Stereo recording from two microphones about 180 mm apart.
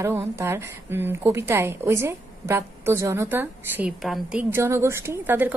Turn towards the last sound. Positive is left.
turn(degrees=-10)  # may be behind; listen again after turning